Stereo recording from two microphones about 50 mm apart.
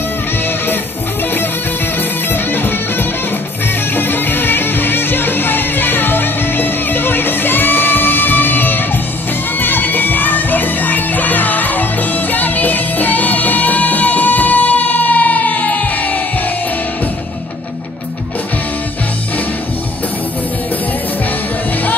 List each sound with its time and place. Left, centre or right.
2.3 s music: left